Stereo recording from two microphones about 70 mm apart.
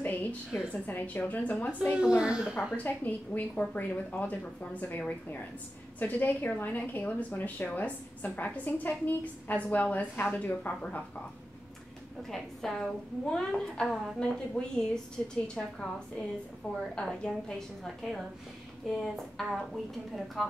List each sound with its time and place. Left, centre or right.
0.0 s a sound: left
0.8 s a woman's voice: left
1.8 s a woman's voice: centre
2.7 s a woman's voice: left
12.2 s a woman's voice: centre